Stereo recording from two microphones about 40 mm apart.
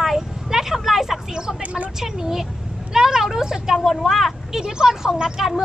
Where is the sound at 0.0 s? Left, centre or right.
Centre.